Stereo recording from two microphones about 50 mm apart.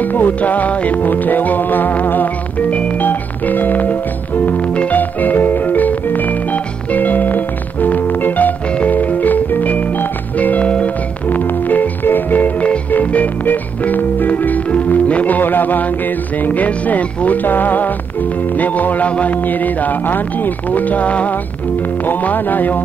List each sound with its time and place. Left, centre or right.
0.0 s music: left
11.2 s organ: left
16.4 s speech: left